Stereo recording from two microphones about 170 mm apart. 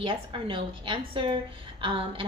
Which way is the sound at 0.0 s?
30° right (ahead or behind).